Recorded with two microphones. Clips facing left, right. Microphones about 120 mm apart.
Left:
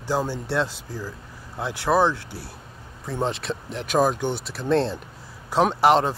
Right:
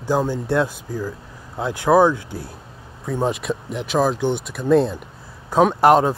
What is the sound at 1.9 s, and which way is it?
Speech, 15° right (ahead or behind).